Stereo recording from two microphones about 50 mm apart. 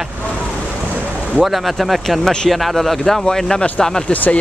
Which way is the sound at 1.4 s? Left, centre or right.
Centre.